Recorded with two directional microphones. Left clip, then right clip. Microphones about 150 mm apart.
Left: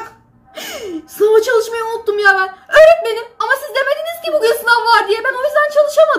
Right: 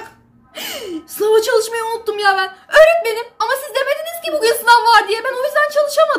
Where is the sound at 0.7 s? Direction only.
30° right (ahead or behind).